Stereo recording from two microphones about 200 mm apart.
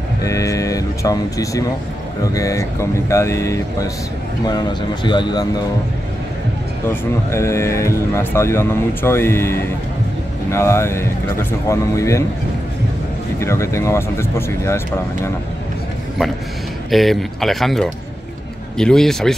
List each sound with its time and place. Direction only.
0.2 s speech: 15° left (ahead or behind)
6.9 s speech: 15° left (ahead or behind)
13.4 s speech: 15° left (ahead or behind)
16.2 s speech: centre (ahead or behind)